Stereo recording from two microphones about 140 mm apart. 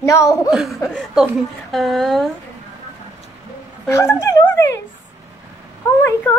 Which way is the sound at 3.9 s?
20° left (ahead or behind).